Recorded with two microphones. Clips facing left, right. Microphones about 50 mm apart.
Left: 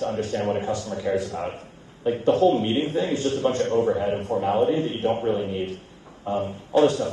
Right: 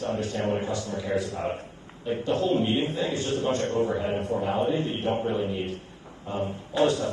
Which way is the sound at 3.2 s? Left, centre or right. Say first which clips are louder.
Left 4 dB; right.